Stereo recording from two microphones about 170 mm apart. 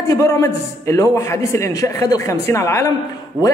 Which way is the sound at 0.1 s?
15° left (ahead or behind).